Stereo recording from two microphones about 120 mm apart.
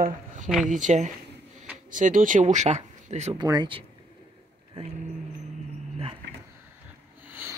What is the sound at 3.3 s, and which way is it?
Speech, 35° right (ahead or behind).